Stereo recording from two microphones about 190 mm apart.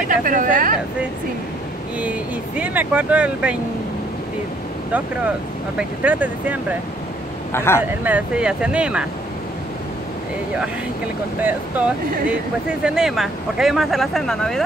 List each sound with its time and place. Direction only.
0.1 s speech: 45° right (ahead or behind)
2.0 s speech: 10° right (ahead or behind)
5.8 s speech: 10° right (ahead or behind)
7.5 s speech: 15° left (ahead or behind)
8.0 s speech: 5° right (ahead or behind)
11.3 s speech: 10° right (ahead or behind)